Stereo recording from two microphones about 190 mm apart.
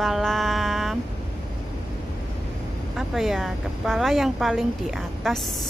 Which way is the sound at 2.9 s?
Centre (ahead or behind).